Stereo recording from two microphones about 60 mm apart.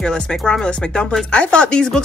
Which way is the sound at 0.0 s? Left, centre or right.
Centre.